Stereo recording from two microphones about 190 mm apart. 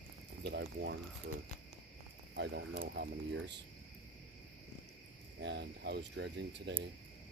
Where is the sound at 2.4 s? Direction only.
70° right (ahead or behind).